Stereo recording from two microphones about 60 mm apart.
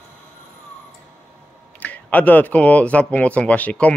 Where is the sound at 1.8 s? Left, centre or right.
Left.